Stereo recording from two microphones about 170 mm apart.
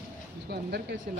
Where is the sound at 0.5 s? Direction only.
70° right (ahead or behind).